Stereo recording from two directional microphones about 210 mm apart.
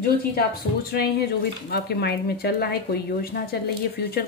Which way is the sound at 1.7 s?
50° left (ahead or behind).